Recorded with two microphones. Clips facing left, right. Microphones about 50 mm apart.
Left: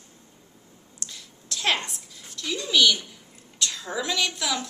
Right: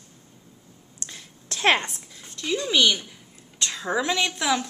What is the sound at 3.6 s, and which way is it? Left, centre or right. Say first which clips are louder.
A woman's voice: right 4 dB; right.